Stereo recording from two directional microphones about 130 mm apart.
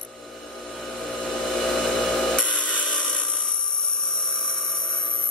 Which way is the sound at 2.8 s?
5° left (ahead or behind).